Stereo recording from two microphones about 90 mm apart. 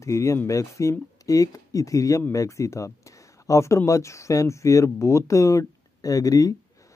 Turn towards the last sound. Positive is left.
turn(degrees=40)  # may be behind; listen again after turning